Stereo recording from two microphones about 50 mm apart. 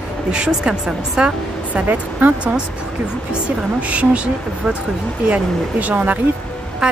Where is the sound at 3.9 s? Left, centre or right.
Right.